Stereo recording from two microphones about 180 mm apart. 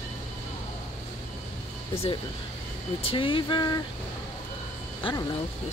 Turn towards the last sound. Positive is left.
turn(degrees=30)  # may be behind; listen again after turning